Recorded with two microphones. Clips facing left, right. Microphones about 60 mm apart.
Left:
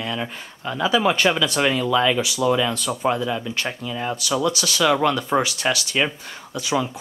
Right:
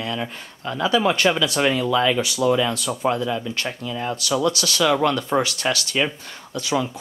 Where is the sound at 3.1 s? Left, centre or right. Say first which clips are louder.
Even; centre.